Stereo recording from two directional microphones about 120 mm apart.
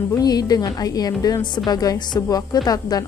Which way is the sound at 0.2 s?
35° left (ahead or behind).